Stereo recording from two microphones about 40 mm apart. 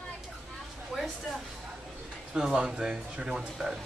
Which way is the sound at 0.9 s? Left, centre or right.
Centre.